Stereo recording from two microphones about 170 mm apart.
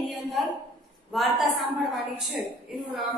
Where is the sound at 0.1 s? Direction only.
Centre (ahead or behind).